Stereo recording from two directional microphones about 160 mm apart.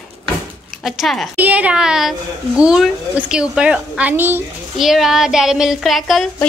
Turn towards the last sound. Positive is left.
turn(degrees=0)  # may be behind; listen again after turning